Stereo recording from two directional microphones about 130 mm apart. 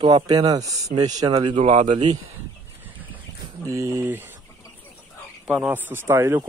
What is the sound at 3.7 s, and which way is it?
Speech, 25° right (ahead or behind).